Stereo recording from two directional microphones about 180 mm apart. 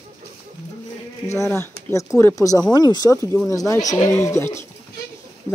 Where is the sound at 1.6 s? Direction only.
15° left (ahead or behind).